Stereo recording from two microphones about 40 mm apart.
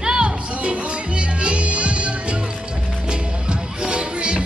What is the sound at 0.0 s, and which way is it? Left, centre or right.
Music, centre.